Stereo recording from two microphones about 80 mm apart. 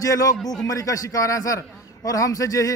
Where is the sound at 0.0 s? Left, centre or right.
Left.